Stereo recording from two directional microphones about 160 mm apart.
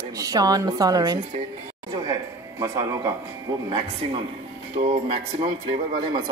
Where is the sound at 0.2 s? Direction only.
25° right (ahead or behind).